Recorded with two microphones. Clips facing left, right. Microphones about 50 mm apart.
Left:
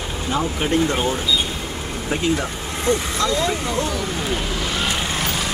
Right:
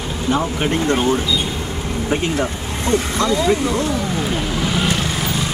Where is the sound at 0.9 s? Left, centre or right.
Centre.